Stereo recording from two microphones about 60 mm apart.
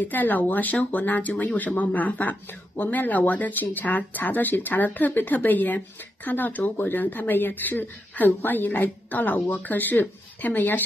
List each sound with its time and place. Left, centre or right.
0.0 s speech: left